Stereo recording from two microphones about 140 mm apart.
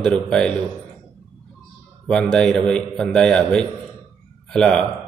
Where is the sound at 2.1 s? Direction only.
5° left (ahead or behind).